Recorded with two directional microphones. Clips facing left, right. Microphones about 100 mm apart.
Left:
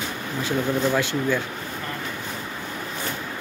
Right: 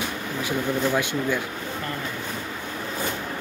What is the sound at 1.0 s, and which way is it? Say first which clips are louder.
Speech: left 1 dB; 15° right (ahead or behind).